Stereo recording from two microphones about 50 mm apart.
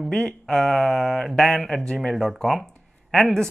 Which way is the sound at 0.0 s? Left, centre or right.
Centre.